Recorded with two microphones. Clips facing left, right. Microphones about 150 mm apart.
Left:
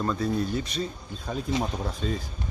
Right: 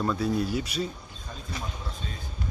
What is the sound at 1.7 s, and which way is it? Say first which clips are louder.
Speech: left 9 dB; 75° left (ahead or behind).